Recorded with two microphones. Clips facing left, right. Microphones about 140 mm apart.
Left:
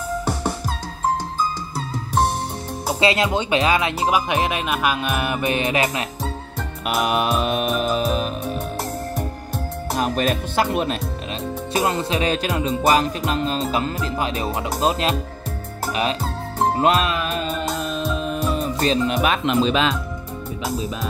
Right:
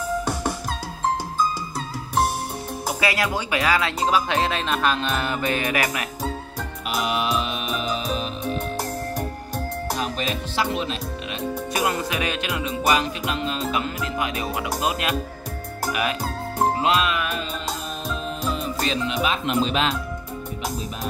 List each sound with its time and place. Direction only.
2.9 s speech: 25° left (ahead or behind)
6.9 s music: 55° left (ahead or behind)
9.9 s music: 50° left (ahead or behind)
11.7 s music: 30° left (ahead or behind)
14.8 s speech: 30° left (ahead or behind)
16.7 s music: 45° left (ahead or behind)
18.2 s music: 55° left (ahead or behind)
18.8 s music: 40° left (ahead or behind)
19.1 s speech: 60° left (ahead or behind)